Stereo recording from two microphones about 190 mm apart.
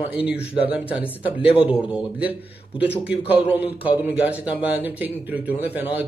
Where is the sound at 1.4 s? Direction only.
30° left (ahead or behind).